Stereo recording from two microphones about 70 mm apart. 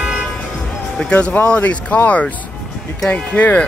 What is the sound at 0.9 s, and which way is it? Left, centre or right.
Speech, centre.